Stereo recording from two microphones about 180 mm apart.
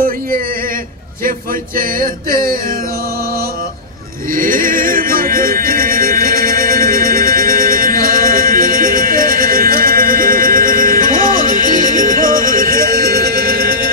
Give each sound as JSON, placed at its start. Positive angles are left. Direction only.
{"t": 4.3, "sound": "music", "side_deg": -50}